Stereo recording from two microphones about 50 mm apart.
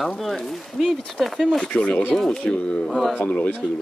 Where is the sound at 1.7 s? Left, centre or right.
Left.